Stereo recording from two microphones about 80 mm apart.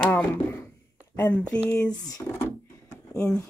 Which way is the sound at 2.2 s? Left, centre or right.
Left.